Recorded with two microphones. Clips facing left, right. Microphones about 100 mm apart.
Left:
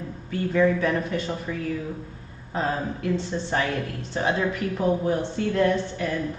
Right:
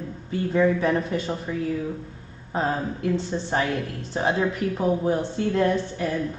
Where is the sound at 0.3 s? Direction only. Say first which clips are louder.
Even; 25° right (ahead or behind).